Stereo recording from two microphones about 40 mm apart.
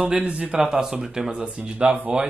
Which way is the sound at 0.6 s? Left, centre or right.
Centre.